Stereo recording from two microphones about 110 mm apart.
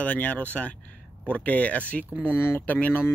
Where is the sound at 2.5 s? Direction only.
15° left (ahead or behind).